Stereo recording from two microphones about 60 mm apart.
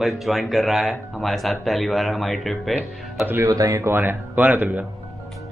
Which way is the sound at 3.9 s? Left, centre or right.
Right.